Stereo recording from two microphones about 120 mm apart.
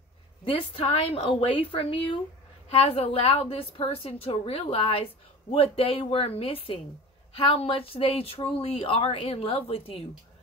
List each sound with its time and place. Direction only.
0.5 s a woman's voice: 50° left (ahead or behind)